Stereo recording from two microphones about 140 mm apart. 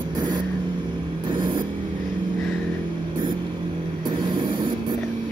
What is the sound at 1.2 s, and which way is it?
Vehicle, 35° right (ahead or behind).